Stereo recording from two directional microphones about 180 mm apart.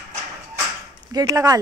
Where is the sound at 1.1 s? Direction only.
20° right (ahead or behind).